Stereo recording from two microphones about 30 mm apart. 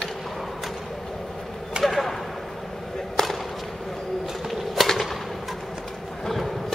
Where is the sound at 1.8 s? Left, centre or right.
Right.